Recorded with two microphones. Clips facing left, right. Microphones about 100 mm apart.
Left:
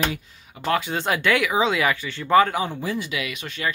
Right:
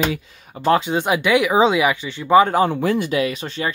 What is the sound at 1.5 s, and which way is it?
Speech, 30° right (ahead or behind).